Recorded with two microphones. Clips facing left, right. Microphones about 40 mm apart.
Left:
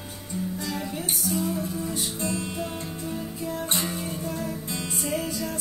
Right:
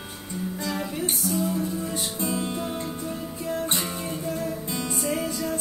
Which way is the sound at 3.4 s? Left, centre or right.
Centre.